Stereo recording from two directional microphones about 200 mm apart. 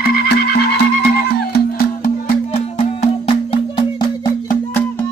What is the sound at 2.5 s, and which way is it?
Music, 30° left (ahead or behind).